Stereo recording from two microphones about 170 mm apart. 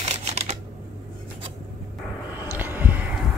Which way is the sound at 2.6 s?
10° right (ahead or behind).